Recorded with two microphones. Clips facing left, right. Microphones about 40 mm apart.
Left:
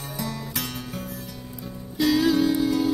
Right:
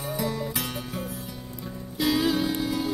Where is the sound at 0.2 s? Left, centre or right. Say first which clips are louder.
Even; centre.